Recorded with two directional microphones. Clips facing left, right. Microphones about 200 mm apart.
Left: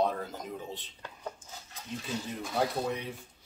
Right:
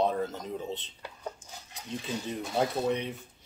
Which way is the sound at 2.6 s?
25° right (ahead or behind).